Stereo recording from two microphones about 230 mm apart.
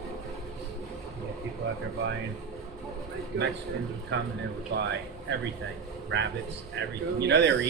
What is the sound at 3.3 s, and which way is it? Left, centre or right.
Speech, right.